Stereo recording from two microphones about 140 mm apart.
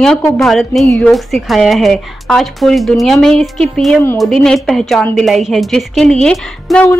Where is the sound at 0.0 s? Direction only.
5° left (ahead or behind).